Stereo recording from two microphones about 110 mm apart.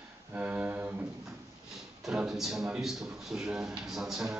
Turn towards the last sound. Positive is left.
turn(degrees=-5)  # may be behind; listen again after turning